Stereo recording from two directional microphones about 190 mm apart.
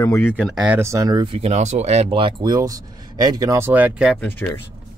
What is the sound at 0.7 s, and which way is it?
Speech, 15° right (ahead or behind).